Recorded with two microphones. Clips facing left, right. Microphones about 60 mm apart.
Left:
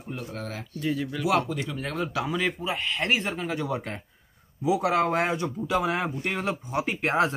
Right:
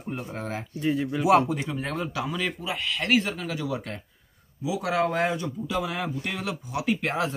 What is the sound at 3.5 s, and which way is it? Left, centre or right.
Speech, left.